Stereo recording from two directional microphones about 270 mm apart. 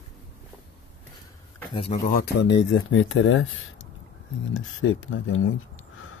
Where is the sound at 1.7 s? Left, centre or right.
Left.